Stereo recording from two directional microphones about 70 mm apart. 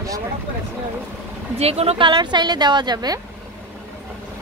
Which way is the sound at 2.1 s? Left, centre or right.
Right.